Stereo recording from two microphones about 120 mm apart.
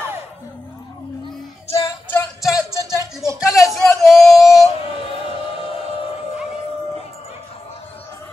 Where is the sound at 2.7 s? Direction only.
30° right (ahead or behind).